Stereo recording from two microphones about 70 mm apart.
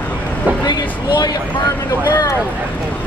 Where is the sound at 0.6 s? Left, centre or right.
Left.